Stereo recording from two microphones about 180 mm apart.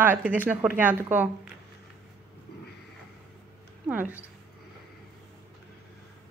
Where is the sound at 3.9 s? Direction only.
10° right (ahead or behind).